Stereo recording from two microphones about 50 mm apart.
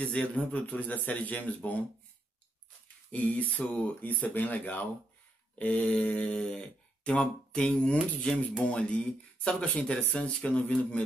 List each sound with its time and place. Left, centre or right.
0.0 s speech: left
3.1 s speech: left